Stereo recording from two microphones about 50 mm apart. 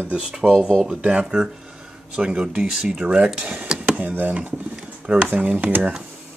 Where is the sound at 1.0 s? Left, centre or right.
Right.